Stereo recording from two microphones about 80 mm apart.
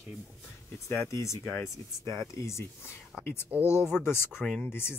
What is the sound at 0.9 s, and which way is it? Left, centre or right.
Speech, left.